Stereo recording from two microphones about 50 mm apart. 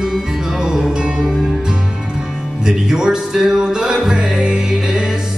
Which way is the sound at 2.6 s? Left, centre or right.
Centre.